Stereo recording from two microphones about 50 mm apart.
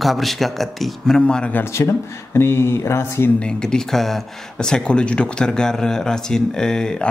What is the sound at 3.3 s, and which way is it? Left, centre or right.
Speech, centre.